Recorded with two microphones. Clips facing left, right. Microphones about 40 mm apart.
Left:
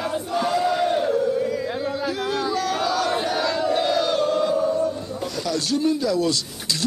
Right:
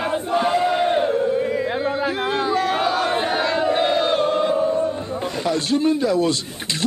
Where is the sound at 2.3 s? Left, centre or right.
Right.